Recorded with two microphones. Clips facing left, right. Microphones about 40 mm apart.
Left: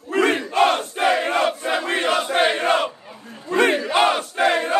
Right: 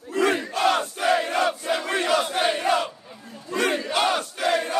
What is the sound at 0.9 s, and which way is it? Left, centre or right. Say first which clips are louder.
Crowd: left 3 dB; left.